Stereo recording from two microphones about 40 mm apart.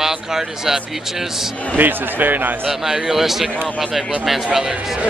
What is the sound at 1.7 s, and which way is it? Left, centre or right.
Speech, right.